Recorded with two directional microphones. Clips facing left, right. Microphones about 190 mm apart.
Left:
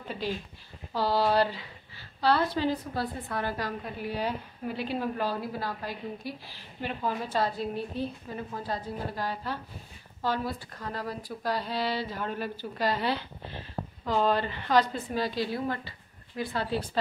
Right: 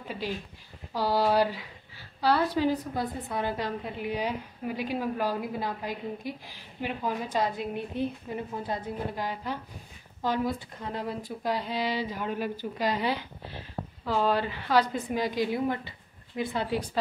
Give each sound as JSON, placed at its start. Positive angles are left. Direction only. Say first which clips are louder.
{"t": 0.9, "sound": "a woman's voice", "louder": "right 1 dB", "side_deg": -10}